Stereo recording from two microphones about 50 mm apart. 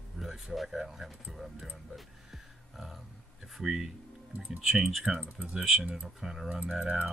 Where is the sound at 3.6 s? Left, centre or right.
Centre.